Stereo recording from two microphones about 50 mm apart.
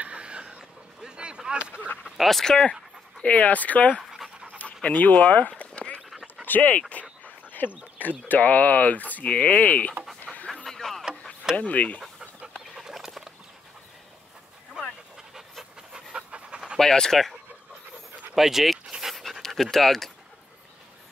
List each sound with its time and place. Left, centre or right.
0.0 s a sound: right
2.1 s speech: centre
3.2 s speech: left
8.3 s speech: left
10.2 s pant: left
10.5 s a sound: centre
11.5 s speech: left
12.7 s rodents: centre
15.3 s pant: centre
16.1 s pant: right
16.7 s speech: centre
18.3 s speech: centre
18.9 s dog: centre
19.4 s speech: centre